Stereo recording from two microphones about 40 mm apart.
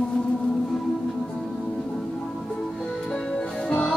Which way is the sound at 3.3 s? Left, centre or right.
Left.